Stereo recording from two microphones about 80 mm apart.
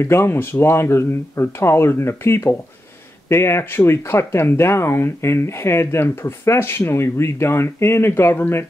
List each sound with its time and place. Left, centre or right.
0.0 s speech: left